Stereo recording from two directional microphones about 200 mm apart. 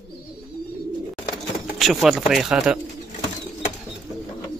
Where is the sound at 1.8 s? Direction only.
Centre (ahead or behind).